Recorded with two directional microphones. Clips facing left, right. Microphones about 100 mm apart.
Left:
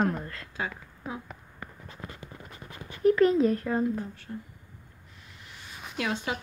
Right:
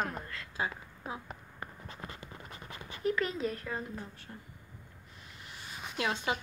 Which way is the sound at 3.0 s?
35° left (ahead or behind).